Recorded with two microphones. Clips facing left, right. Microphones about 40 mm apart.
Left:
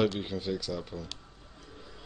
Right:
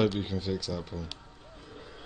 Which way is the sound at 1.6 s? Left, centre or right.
Right.